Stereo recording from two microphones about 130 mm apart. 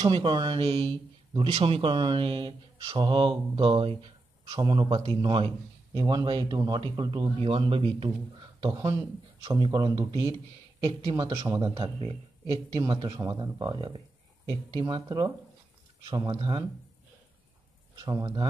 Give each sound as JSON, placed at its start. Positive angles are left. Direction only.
{"t": 0.0, "sound": "speech", "side_deg": -40}
{"t": 17.9, "sound": "speech", "side_deg": -30}